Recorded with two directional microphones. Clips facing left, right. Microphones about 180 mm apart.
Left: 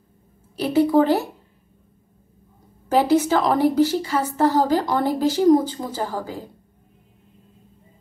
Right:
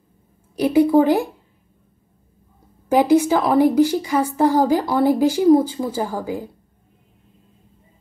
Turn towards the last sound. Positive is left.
turn(degrees=-15)  # may be behind; listen again after turning